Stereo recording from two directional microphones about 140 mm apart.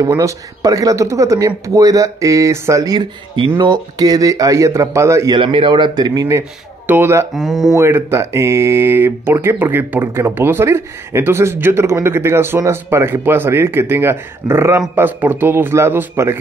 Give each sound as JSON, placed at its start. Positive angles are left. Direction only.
{"t": 0.0, "sound": "speech", "side_deg": -25}
{"t": 5.4, "sound": "speech", "side_deg": -35}
{"t": 7.3, "sound": "speech", "side_deg": 0}
{"t": 7.7, "sound": "speech", "side_deg": -20}